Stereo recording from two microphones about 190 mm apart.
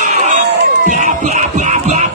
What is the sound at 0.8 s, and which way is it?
Music, 40° right (ahead or behind).